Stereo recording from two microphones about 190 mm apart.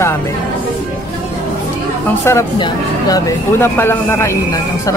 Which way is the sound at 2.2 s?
15° left (ahead or behind).